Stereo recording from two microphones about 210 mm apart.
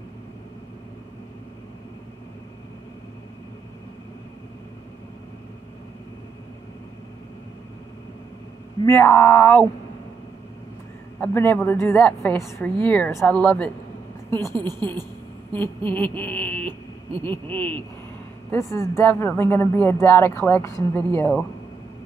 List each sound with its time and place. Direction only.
8.8 s speech: 10° left (ahead or behind)
11.1 s speech: 10° left (ahead or behind)
14.5 s a woman's voice: 20° right (ahead or behind)
15.5 s speech: 10° left (ahead or behind)